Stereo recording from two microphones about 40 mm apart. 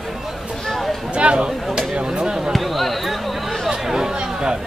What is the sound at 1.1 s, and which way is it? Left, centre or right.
Speech, right.